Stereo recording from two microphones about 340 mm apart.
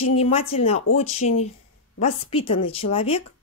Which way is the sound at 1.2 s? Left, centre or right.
Left.